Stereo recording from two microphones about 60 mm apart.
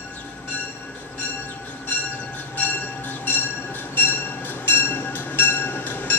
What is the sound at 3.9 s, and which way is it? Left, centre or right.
Train, left.